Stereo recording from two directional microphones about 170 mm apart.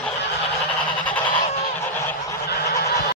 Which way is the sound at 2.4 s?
65° left (ahead or behind).